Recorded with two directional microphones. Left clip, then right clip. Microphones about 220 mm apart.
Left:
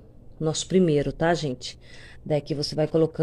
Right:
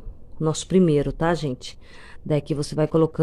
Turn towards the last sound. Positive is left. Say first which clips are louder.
# right 2 dB
turn(degrees=-20)  # may be behind; listen again after turning